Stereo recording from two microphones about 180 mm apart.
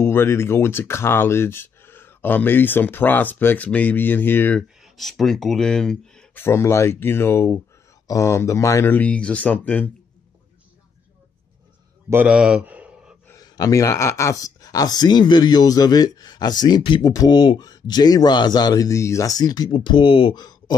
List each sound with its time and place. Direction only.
0.0 s speech: 15° left (ahead or behind)
12.1 s speech: 10° right (ahead or behind)
13.3 s speech: 20° left (ahead or behind)